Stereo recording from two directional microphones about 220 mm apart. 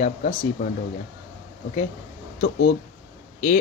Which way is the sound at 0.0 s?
35° left (ahead or behind).